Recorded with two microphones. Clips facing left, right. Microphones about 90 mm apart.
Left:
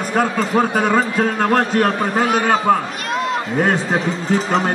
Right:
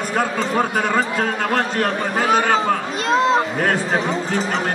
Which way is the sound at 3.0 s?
25° right (ahead or behind).